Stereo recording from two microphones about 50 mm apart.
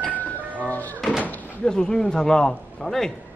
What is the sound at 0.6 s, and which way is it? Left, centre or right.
Speech, left.